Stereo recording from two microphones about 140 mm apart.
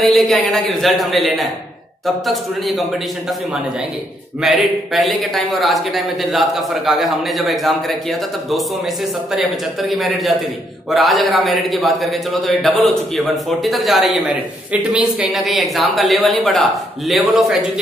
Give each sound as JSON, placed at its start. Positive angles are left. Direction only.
{"t": 0.0, "sound": "speech", "side_deg": 0}
{"t": 4.4, "sound": "speech", "side_deg": 0}